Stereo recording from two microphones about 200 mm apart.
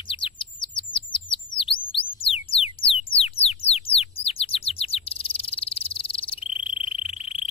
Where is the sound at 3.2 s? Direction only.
30° left (ahead or behind).